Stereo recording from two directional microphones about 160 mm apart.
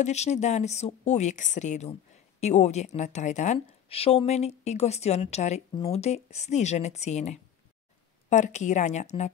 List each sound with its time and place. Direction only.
0.0 s speech: 45° left (ahead or behind)
3.5 s a woman's voice: 35° left (ahead or behind)